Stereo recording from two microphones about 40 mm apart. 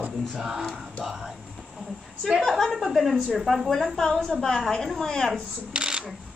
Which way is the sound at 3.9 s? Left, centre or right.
Centre.